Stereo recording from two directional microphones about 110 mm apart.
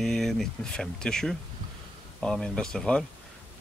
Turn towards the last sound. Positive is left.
turn(degrees=5)  # may be behind; listen again after turning